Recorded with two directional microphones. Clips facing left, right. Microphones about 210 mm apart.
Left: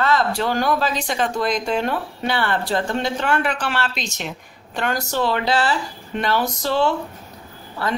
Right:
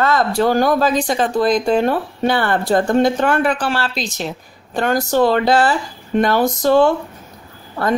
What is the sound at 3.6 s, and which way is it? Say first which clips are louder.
A woman's voice: right 4 dB; 35° right (ahead or behind).